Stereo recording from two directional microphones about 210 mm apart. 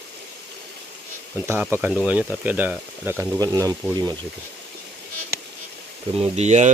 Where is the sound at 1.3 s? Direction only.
10° right (ahead or behind).